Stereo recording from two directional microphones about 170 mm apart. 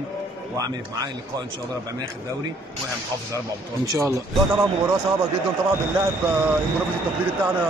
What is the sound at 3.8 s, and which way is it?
A man's voice, 15° right (ahead or behind).